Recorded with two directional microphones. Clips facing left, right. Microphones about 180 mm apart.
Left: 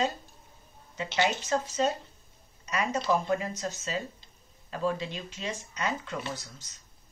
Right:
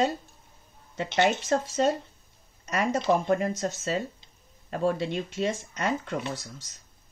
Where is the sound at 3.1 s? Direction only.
55° right (ahead or behind).